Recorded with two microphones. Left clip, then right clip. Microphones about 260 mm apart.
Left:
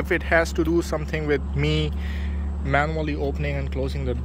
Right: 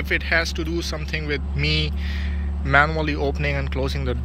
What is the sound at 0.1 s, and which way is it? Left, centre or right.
A man's voice, centre.